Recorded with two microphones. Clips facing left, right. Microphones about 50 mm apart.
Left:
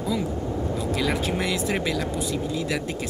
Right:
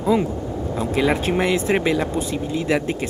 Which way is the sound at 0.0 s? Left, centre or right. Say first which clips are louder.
Right 7 dB; right.